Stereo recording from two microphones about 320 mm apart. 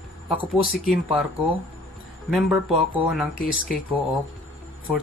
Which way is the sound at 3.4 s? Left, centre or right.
Left.